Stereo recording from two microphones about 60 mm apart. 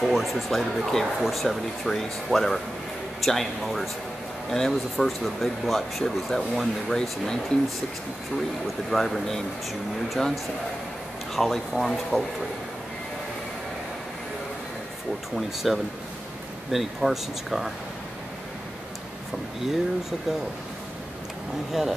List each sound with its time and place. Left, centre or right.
0.0 s speech: centre
8.9 s speech: centre
15.3 s speech: centre
19.6 s speech: centre